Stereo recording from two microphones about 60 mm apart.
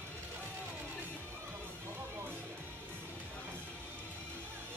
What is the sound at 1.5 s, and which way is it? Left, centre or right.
Music, right.